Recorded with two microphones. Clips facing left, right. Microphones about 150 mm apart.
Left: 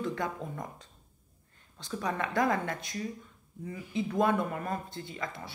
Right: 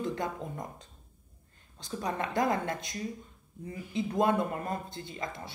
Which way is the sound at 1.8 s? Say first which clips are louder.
Even; 30° right (ahead or behind).